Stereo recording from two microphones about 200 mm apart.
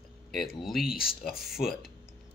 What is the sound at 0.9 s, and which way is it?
Speech, 50° left (ahead or behind).